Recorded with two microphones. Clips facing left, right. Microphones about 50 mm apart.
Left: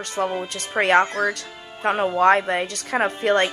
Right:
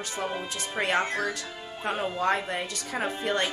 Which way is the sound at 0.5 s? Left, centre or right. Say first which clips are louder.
Left 10 dB; left.